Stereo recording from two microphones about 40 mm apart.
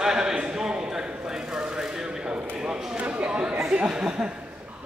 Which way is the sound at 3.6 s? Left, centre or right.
Right.